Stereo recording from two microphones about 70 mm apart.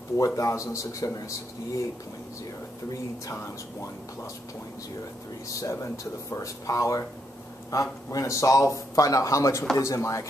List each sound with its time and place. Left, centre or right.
0.2 s a man's voice: left
3.3 s a man's voice: left
5.5 s a man's voice: left